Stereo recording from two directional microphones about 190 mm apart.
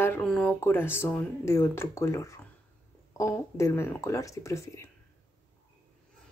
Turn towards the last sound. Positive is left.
turn(degrees=15)  # may be behind; listen again after turning